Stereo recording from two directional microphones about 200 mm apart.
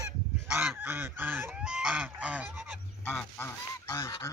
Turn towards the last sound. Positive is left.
turn(degrees=15)  # may be behind; listen again after turning